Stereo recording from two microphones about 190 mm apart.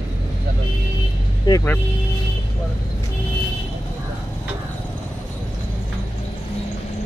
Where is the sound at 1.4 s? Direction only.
15° left (ahead or behind).